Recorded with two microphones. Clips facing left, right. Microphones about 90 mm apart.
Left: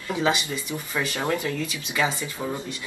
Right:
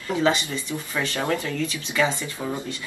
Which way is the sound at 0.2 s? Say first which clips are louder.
Right 2 dB; 15° left (ahead or behind).